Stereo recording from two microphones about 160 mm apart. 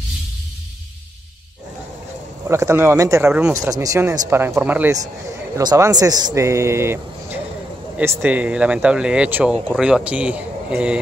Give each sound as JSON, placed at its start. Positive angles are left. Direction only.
{"t": 2.4, "sound": "speech", "side_deg": -15}
{"t": 5.6, "sound": "speech", "side_deg": -25}